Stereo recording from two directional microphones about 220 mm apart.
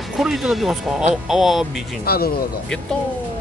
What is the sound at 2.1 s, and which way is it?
Speech, 45° left (ahead or behind).